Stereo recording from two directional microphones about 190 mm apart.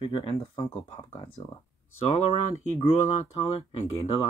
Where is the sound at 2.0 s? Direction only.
30° left (ahead or behind).